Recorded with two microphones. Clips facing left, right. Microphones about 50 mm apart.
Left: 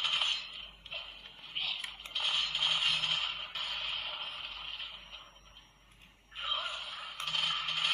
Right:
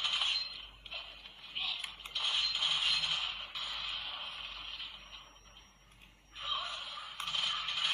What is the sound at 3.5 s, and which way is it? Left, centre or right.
Music, left.